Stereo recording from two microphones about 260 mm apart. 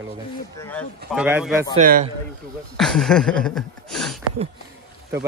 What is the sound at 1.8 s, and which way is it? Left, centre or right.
Speech, right.